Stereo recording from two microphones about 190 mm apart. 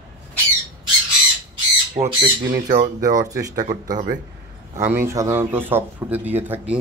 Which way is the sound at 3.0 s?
20° right (ahead or behind).